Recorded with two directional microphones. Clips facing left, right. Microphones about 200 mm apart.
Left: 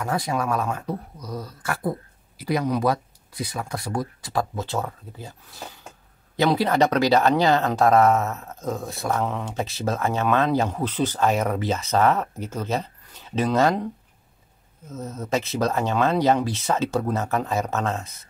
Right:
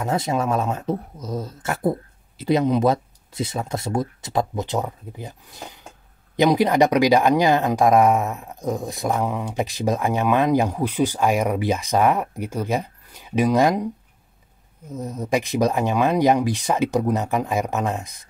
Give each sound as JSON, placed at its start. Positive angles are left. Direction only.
{"t": 0.0, "sound": "speech", "side_deg": -25}
{"t": 14.9, "sound": "speech", "side_deg": -15}